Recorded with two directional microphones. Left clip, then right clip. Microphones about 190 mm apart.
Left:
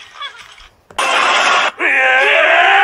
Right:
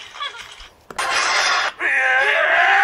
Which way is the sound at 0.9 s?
55° left (ahead or behind).